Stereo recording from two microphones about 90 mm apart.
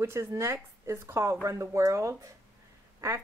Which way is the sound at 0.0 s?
30° right (ahead or behind).